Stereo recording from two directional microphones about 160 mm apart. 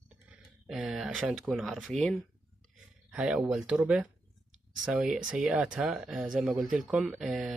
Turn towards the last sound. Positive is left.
turn(degrees=0)  # may be behind; listen again after turning